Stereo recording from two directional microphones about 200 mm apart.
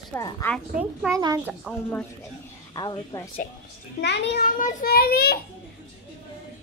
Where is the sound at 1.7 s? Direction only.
5° right (ahead or behind).